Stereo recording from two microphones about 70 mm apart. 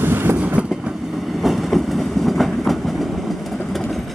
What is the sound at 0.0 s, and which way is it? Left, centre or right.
Train, right.